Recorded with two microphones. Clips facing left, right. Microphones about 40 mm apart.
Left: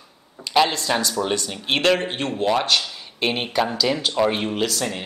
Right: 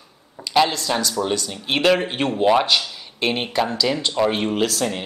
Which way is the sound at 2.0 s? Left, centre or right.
Centre.